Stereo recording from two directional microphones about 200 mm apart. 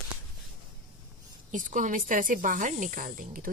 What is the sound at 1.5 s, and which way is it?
A woman's voice, 40° right (ahead or behind).